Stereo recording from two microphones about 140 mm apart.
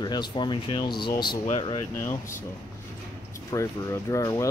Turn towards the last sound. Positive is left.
turn(degrees=25)  # may be behind; listen again after turning